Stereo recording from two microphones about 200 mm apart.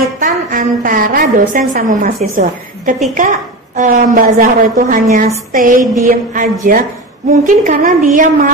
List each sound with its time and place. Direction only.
0.2 s a woman's voice: 45° right (ahead or behind)
6.0 s a sound: 40° right (ahead or behind)
7.4 s a woman's voice: 40° right (ahead or behind)